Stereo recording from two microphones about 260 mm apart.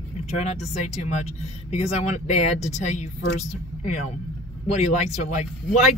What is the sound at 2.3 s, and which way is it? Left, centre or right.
Speech, left.